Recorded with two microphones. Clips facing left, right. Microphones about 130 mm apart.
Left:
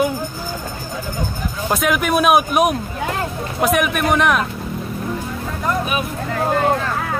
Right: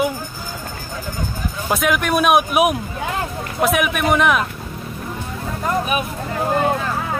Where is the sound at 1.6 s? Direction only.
Centre (ahead or behind).